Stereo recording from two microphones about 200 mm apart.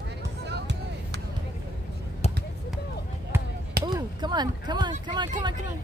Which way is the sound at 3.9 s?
20° right (ahead or behind).